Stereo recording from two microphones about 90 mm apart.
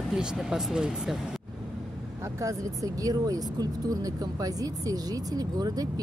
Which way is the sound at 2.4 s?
40° right (ahead or behind).